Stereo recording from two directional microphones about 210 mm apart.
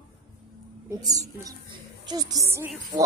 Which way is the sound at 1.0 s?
15° right (ahead or behind).